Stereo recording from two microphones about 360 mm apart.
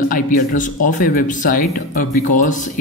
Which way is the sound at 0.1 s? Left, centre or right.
Left.